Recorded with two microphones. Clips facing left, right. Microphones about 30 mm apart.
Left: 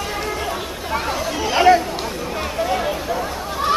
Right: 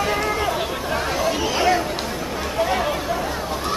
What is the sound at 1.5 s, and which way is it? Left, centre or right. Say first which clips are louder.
Chatter: left 8 dB; centre.